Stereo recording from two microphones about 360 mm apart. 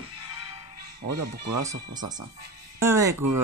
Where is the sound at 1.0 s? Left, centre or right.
Right.